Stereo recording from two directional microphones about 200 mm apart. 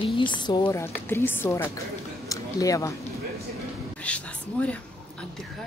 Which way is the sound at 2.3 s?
15° left (ahead or behind).